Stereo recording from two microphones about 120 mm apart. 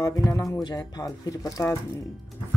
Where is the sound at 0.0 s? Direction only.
30° left (ahead or behind).